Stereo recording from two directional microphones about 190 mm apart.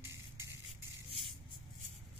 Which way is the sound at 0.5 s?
70° right (ahead or behind).